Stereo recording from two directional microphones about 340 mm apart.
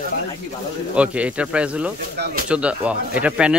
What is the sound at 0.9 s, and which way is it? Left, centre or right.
Speech, centre.